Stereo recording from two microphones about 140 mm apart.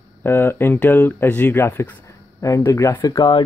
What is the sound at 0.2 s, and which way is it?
Speech, 15° left (ahead or behind).